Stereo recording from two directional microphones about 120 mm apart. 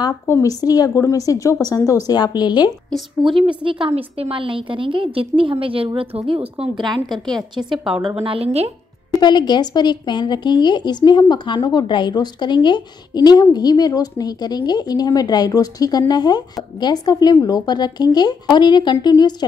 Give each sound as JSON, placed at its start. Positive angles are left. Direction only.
{"t": 0.3, "sound": "speech", "side_deg": 30}
{"t": 3.6, "sound": "a woman's voice", "side_deg": -45}
{"t": 7.1, "sound": "a woman's voice", "side_deg": 0}
{"t": 8.2, "sound": "a woman's voice", "side_deg": -55}
{"t": 9.2, "sound": "a woman's voice", "side_deg": 35}